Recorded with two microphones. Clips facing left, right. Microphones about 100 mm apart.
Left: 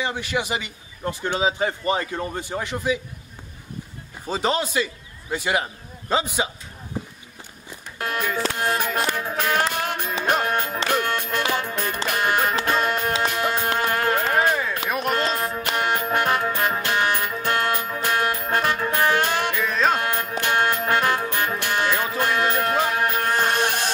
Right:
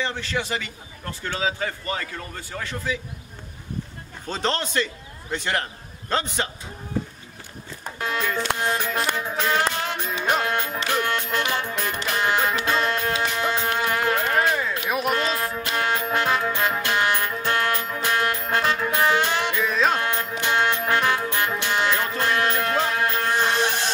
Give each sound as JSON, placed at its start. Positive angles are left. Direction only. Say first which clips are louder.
{"t": 0.0, "sound": "a man's voice", "louder": "left 2 dB", "side_deg": 15}
{"t": 4.3, "sound": "a man's voice", "louder": "left 3 dB", "side_deg": 10}
{"t": 8.1, "sound": "a man's voice", "louder": "even", "side_deg": 10}
{"t": 9.8, "sound": "music", "louder": "left 1 dB", "side_deg": 15}
{"t": 14.9, "sound": "music", "louder": "even", "side_deg": -5}
{"t": 15.7, "sound": "music", "louder": "left 1 dB", "side_deg": 15}
{"t": 19.6, "sound": "music", "louder": "even", "side_deg": 0}
{"t": 20.0, "sound": "music", "louder": "left 1 dB", "side_deg": 15}